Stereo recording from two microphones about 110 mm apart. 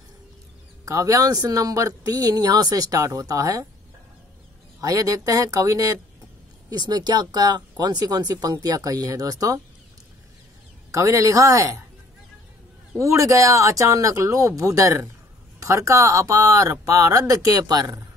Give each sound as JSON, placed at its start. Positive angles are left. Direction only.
{"t": 0.8, "sound": "speech", "side_deg": -30}
{"t": 4.7, "sound": "speech", "side_deg": -30}
{"t": 10.9, "sound": "speech", "side_deg": -30}
{"t": 13.0, "sound": "speech", "side_deg": -30}